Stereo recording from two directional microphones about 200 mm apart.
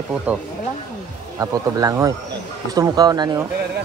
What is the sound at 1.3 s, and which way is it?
Speech, 15° right (ahead or behind).